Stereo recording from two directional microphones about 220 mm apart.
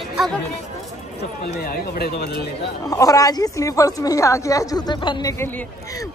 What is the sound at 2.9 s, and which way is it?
A woman's voice, 15° left (ahead or behind).